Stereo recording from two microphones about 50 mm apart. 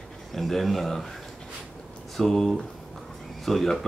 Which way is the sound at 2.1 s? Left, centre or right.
Centre.